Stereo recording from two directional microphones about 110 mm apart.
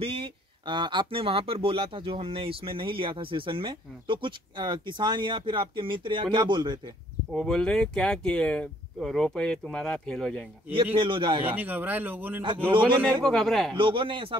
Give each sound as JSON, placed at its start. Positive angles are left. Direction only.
{"t": 0.0, "sound": "speech", "side_deg": -55}
{"t": 7.3, "sound": "speech", "side_deg": 5}
{"t": 11.0, "sound": "speech", "side_deg": -50}
{"t": 11.5, "sound": "speech", "side_deg": -15}
{"t": 13.2, "sound": "a man's voice", "side_deg": 5}
{"t": 13.7, "sound": "speech", "side_deg": -50}